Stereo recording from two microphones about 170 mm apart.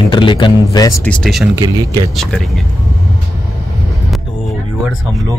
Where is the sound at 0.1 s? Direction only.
30° left (ahead or behind).